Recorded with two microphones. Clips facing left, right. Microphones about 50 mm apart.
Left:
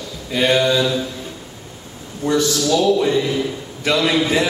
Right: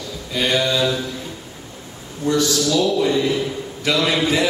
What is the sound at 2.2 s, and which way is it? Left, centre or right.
Speech, left.